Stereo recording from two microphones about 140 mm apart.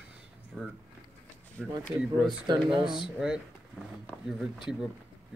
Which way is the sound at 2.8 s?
5° right (ahead or behind).